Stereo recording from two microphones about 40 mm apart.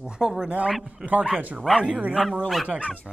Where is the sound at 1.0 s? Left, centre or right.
Right.